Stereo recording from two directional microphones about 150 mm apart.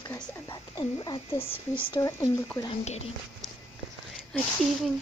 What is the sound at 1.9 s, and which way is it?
Speech, 20° left (ahead or behind).